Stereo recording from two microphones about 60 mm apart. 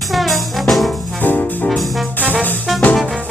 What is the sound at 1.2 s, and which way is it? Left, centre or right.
Music, left.